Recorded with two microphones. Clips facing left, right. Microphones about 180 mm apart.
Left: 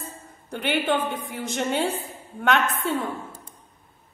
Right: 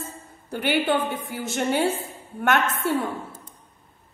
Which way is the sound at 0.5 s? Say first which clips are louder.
Right 2 dB; 5° right (ahead or behind).